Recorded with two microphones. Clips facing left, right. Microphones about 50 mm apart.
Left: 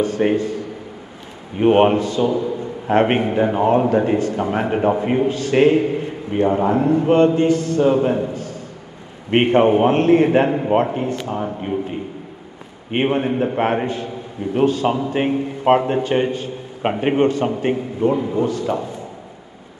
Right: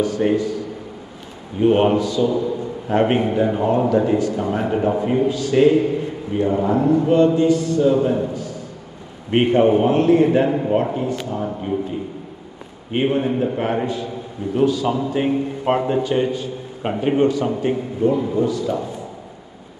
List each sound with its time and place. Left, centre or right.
0.0 s a man's voice: left
1.6 s a man's voice: left
3.2 s a man's voice: centre
5.3 s a man's voice: left
8.3 s a sound: left
9.3 s a man's voice: left
12.9 s a man's voice: left